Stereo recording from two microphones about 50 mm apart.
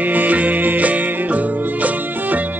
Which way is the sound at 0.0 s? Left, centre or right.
Right.